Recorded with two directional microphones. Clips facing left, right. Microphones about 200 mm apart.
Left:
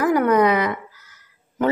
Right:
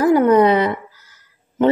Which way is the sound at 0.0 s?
30° right (ahead or behind).